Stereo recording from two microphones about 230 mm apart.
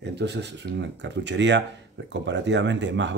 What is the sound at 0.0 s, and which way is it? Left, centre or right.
Speech, right.